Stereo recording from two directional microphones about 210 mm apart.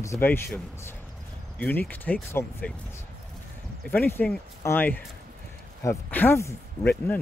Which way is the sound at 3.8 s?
10° left (ahead or behind).